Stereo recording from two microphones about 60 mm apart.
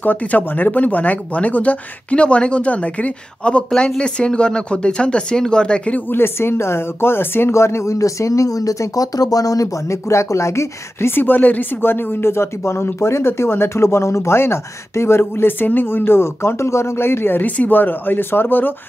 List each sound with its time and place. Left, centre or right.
0.0 s speech: left
5.9 s speech: left
9.8 s speech: left